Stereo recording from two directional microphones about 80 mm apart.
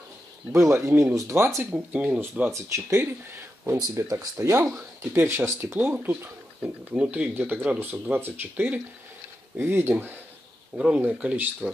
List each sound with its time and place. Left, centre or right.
0.5 s speech: right; by 2.5 s centre
2.5 s speech: right
4.1 s speech: right
5.1 s speech: right
5.8 s speech: centre
10.8 s speech: centre